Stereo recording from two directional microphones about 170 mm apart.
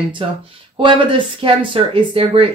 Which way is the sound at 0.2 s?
30° right (ahead or behind).